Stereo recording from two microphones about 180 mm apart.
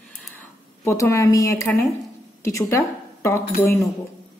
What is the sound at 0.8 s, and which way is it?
A woman's voice, 15° left (ahead or behind).